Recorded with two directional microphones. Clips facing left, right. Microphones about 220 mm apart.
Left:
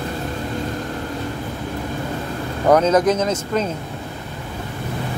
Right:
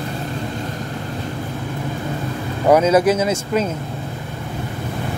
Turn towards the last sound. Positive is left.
turn(degrees=-10)  # may be behind; listen again after turning